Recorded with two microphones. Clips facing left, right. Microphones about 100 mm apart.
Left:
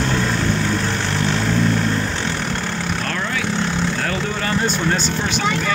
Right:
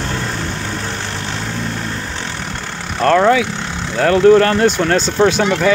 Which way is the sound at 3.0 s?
90° right.